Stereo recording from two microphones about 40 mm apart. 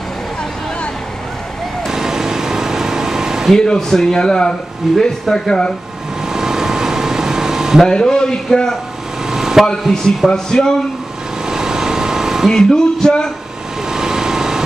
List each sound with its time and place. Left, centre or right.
1.9 s vehicle: centre
3.5 s a man's voice: left
4.9 s speech: centre
5.3 s a man's voice: centre
6.2 s air conditioning: centre
7.8 s a man's voice: centre
9.3 s air conditioning: centre
9.8 s a man's voice: centre
11.4 s vehicle: centre
12.4 s a man's voice: centre
13.9 s vehicle: centre